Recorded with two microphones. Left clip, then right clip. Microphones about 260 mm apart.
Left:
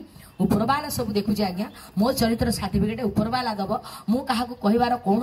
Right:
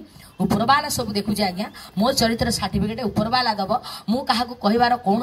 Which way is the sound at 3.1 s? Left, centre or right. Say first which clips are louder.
Right 8 dB; centre.